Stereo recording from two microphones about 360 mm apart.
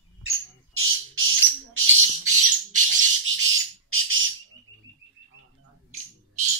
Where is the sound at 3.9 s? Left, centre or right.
Right.